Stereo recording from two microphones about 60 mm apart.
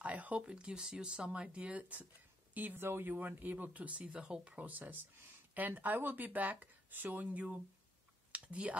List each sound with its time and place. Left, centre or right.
0.0 s speech: right
8.3 s typing: right